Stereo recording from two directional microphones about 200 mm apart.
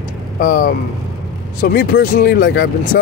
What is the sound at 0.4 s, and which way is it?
A man's voice, 45° left (ahead or behind).